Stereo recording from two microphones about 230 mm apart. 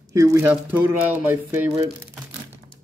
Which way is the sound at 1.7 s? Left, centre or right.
Centre.